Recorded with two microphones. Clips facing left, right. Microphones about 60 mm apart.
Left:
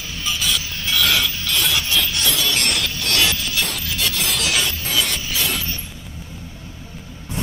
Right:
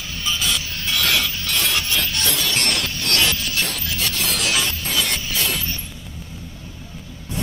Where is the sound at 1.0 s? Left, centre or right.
Right.